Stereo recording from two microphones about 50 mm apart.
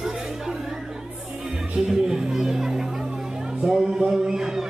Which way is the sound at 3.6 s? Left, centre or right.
Centre.